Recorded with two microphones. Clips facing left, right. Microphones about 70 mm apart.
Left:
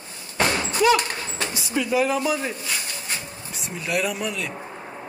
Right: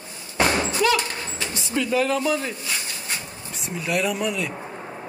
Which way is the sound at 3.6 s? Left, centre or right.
Centre.